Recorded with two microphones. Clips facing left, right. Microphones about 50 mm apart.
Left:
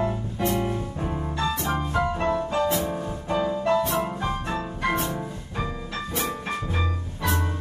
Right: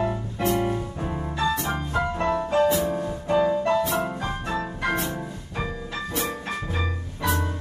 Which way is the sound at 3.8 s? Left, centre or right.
Centre.